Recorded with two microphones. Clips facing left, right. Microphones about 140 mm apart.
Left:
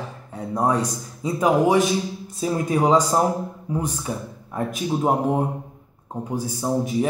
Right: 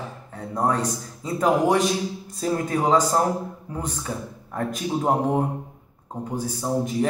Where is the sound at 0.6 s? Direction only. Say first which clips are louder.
Left 1 dB; 15° left (ahead or behind).